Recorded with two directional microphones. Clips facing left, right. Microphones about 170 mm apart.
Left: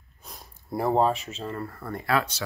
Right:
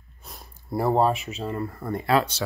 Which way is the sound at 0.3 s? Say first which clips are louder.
Right 3 dB; centre (ahead or behind).